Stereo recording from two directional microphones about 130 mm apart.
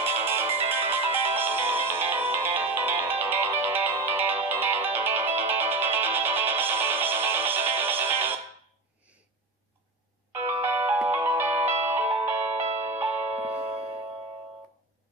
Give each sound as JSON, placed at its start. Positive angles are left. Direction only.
{"t": 0.0, "sound": "ringtone", "side_deg": -20}
{"t": 0.6, "sound": "music", "side_deg": -15}
{"t": 10.3, "sound": "music", "side_deg": -15}